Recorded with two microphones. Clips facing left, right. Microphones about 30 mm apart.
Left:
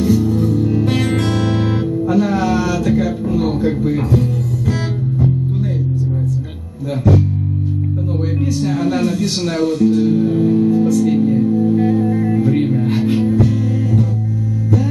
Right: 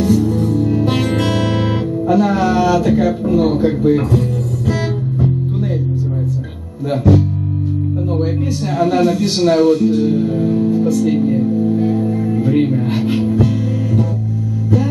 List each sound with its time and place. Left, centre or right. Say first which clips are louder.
0.0 s music: even; centre
1.1 s music: right 1 dB; right
2.1 s music: right 2 dB; centre
2.6 s speech: right 3 dB; centre
8.7 s a man's voice: right 7 dB; centre
11.0 s music: left 1 dB; centre
12.4 s music: right 1 dB; centre